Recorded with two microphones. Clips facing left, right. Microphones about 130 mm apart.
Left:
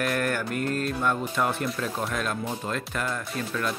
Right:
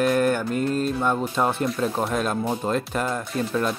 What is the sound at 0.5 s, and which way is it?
Music, 55° left (ahead or behind).